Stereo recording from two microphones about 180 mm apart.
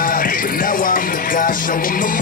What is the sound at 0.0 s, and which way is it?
Music, 50° left (ahead or behind).